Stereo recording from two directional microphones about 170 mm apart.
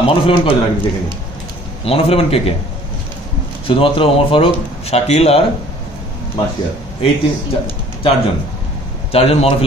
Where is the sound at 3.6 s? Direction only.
30° left (ahead or behind).